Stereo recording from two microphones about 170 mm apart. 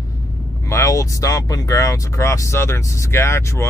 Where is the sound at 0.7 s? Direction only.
20° left (ahead or behind).